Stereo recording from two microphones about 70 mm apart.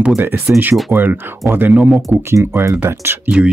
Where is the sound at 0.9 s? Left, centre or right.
Right.